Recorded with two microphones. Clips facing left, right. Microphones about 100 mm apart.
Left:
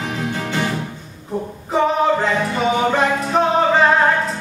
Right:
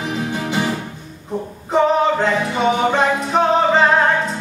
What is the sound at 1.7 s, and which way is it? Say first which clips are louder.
Music: right 1 dB; centre (ahead or behind).